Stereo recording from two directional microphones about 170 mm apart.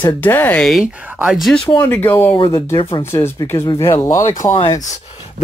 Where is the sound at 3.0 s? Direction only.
15° left (ahead or behind).